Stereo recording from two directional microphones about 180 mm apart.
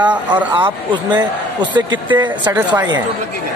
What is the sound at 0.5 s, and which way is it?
A man's voice, 25° right (ahead or behind).